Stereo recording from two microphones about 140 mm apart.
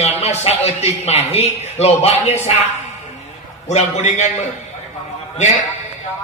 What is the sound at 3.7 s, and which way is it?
A man's voice, 55° left (ahead or behind).